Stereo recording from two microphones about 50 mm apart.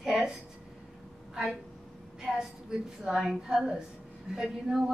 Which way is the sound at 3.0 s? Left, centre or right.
Centre.